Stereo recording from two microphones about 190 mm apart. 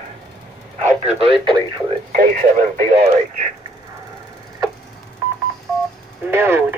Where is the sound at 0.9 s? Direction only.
30° right (ahead or behind).